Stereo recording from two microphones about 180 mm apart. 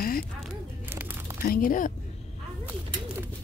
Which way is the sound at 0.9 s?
10° right (ahead or behind).